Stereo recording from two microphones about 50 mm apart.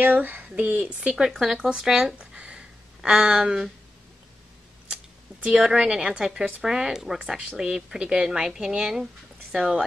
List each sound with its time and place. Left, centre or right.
0.0 s speech: right
0.6 s speech: right
1.3 s speech: centre
2.1 s a sound: right
3.3 s speech: centre
5.4 s speech: centre